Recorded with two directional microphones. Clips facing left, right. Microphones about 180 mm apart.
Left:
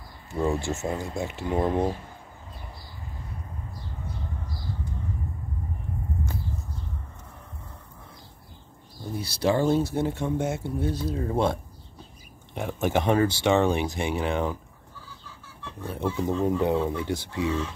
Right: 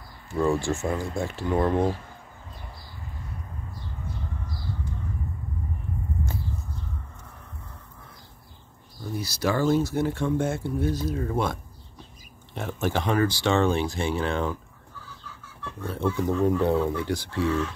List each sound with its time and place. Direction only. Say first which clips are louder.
0.3 s speech: right 2 dB; 20° left (ahead or behind)
9.2 s speech: left 1 dB; 30° left (ahead or behind)
12.5 s speech: left 2 dB; 15° left (ahead or behind)
15.8 s speech: right 2 dB; 15° left (ahead or behind)